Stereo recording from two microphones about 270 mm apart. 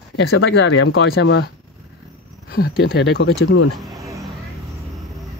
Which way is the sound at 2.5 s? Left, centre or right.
Left.